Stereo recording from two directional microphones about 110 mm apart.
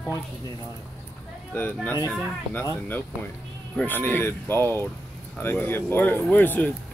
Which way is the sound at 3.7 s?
15° left (ahead or behind).